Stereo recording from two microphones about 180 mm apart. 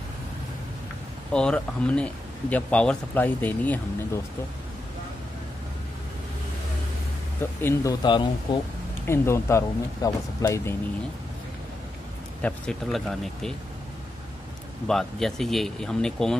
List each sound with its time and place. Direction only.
1.3 s speech: 5° left (ahead or behind)
7.6 s speech: 20° left (ahead or behind)
9.0 s speech: 15° left (ahead or behind)
12.4 s speech: 5° left (ahead or behind)
14.9 s speech: centre (ahead or behind)